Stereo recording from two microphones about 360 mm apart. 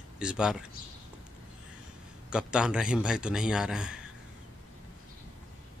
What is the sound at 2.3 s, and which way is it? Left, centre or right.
Speech, centre.